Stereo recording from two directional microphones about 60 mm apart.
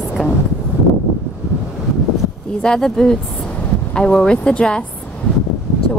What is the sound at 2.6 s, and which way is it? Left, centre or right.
Speech, centre.